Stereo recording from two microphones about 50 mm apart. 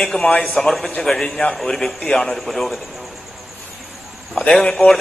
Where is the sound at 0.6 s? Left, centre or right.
Centre.